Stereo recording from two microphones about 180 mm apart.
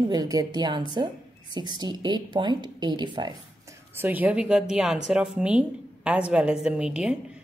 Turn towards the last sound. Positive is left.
turn(degrees=-5)  # may be behind; listen again after turning